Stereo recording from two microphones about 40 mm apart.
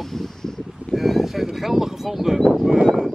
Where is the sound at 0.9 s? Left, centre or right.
Centre.